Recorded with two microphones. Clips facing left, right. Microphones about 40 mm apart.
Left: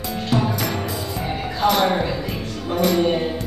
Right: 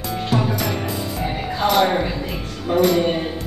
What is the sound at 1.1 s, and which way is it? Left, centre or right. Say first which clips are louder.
Music: right 1 dB; centre.